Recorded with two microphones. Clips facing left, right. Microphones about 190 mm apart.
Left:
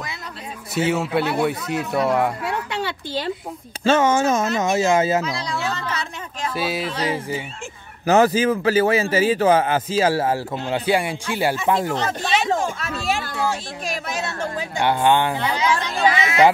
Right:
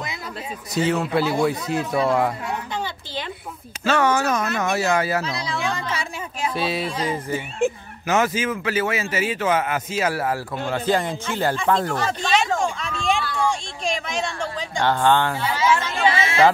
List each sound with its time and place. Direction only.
0.7 s a woman's voice: 5° left (ahead or behind)
2.4 s a sound: 75° left (ahead or behind)
3.8 s a man's voice: 25° left (ahead or behind)
5.6 s a woman's voice: 10° right (ahead or behind)
6.5 s a woman's voice: 5° left (ahead or behind)
8.1 s a man's voice: 35° left (ahead or behind); by 12.1 s 15° left (ahead or behind)
12.1 s speech: 5° left (ahead or behind)
12.5 s a sound: 5° left (ahead or behind)
13.4 s a woman's voice: 5° left (ahead or behind)
16.1 s speech: 30° right (ahead or behind)